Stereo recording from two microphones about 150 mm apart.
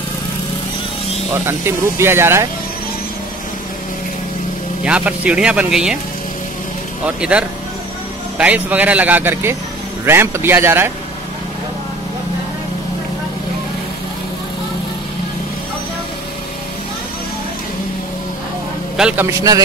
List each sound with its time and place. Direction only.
2.0 s a man's voice: 15° right (ahead or behind)
4.8 s a man's voice: 10° right (ahead or behind)
7.1 s a man's voice: 5° right (ahead or behind)
18.9 s a man's voice: 5° right (ahead or behind)
19.2 s a man's voice: 25° right (ahead or behind)